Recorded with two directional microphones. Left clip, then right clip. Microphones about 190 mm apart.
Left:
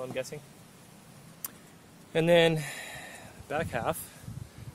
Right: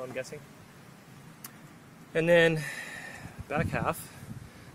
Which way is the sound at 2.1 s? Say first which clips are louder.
Even; 5° left (ahead or behind).